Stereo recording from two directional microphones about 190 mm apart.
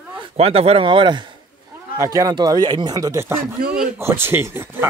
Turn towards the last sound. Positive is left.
turn(degrees=-10)  # may be behind; listen again after turning